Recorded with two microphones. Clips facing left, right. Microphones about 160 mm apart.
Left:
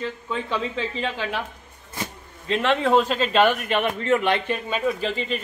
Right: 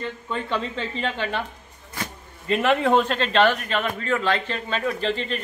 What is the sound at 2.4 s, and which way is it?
A man's voice, 5° right (ahead or behind).